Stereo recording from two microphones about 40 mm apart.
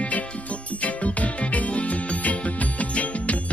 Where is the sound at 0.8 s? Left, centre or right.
Left.